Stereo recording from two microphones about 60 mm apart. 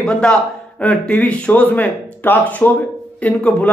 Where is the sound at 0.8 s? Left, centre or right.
Left.